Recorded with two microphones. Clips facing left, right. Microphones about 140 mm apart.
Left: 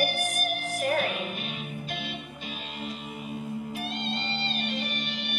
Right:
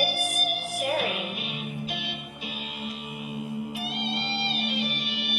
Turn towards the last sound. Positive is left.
turn(degrees=-5)  # may be behind; listen again after turning